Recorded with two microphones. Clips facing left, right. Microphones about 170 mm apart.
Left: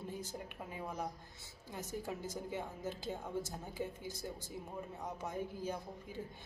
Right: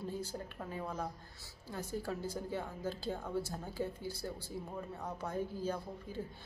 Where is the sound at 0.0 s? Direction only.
20° left (ahead or behind).